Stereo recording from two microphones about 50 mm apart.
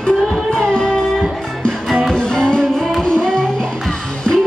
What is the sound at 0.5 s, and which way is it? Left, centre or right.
Music, centre.